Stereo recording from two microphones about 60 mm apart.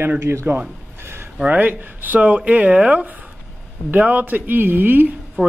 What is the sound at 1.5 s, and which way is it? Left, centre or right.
A man's voice, right.